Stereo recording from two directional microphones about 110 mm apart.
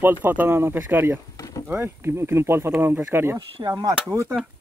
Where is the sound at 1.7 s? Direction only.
20° right (ahead or behind).